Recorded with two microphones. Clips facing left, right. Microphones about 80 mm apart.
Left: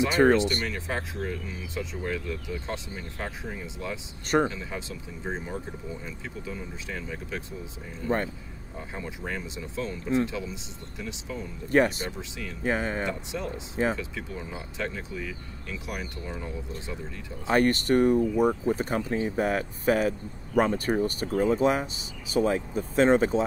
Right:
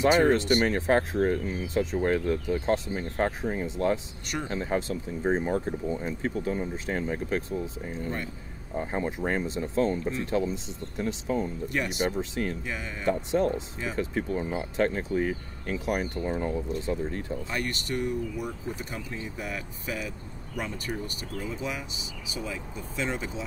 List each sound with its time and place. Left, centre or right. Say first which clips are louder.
0.3 s speech: right 1 dB; right
11.7 s speech: left 10 dB; left
12.2 s speech: right 8 dB; right
12.6 s speech: left 8 dB; left
13.0 s speech: right 6 dB; right
17.5 s speech: left 14 dB; left